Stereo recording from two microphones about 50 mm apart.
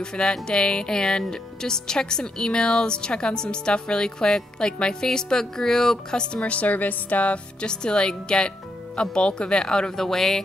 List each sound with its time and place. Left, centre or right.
0.0 s speech: centre
7.6 s speech: centre